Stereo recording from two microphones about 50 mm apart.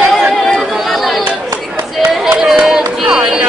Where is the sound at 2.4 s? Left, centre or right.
Centre.